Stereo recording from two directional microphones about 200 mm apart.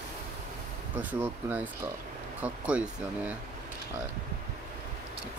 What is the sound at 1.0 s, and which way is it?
Speech, 10° right (ahead or behind).